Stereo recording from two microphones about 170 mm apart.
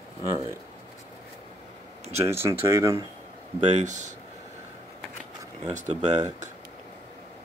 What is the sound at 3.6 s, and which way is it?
Speech, 45° right (ahead or behind).